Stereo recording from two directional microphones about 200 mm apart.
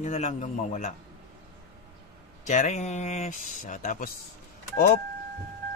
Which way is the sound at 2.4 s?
35° left (ahead or behind).